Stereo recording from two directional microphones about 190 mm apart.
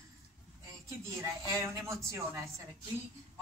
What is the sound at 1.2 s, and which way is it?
A man's voice, 15° right (ahead or behind).